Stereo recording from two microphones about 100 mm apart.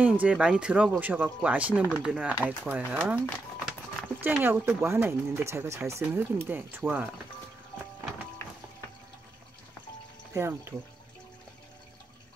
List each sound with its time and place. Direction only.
0.0 s speech: 15° right (ahead or behind)
4.4 s speech: 20° right (ahead or behind)
10.3 s speech: 25° right (ahead or behind)